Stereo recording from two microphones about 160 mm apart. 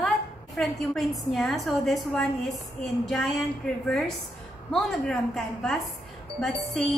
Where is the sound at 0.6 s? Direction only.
Centre (ahead or behind).